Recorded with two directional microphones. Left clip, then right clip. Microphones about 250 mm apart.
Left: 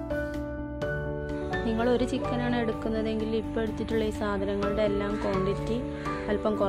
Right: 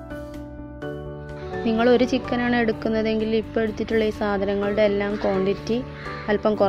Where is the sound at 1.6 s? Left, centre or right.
Centre.